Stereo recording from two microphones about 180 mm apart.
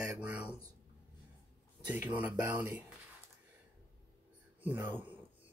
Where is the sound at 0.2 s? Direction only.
5° right (ahead or behind).